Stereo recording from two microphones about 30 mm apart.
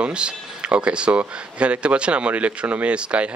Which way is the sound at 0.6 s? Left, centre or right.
Right.